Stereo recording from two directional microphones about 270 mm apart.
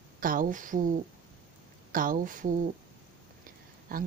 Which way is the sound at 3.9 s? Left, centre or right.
Right.